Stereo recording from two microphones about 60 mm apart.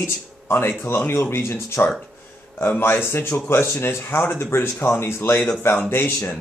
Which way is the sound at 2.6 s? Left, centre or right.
Left.